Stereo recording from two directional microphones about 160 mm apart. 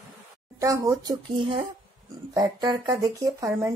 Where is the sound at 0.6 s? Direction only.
20° right (ahead or behind).